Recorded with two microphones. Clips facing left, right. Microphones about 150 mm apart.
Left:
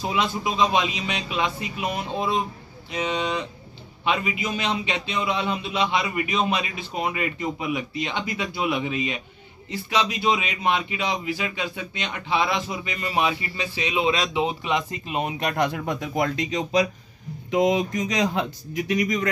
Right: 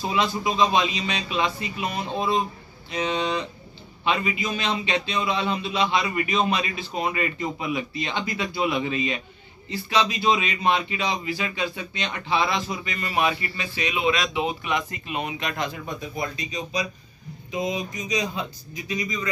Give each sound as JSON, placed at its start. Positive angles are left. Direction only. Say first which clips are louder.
{"t": 0.0, "sound": "a man's voice", "louder": "right 1 dB", "side_deg": 10}
{"t": 15.6, "sound": "a man's voice", "louder": "left 5 dB", "side_deg": 70}